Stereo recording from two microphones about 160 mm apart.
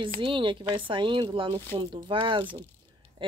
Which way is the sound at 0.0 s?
30° right (ahead or behind).